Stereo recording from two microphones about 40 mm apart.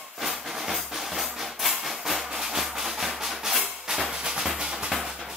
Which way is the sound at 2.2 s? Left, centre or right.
Centre.